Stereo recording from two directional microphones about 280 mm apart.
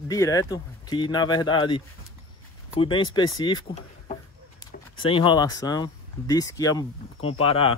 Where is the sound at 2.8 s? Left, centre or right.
Centre.